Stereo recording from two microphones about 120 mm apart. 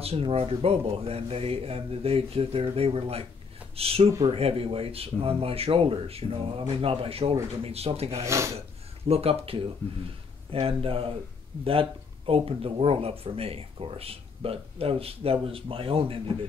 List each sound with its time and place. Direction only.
0.0 s speech: 55° right (ahead or behind)
8.3 s speech: 25° right (ahead or behind)
8.5 s speech: 55° right (ahead or behind)